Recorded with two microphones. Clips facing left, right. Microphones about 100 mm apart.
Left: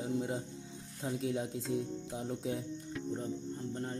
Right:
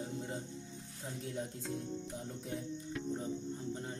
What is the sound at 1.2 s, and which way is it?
Speech, 90° left.